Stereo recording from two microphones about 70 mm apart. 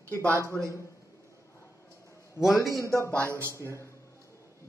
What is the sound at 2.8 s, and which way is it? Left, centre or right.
A man's voice, left.